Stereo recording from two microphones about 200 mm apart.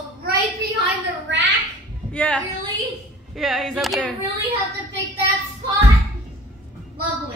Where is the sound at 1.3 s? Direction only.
65° right (ahead or behind).